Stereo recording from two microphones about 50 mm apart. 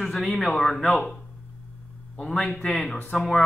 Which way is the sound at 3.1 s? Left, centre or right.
Centre.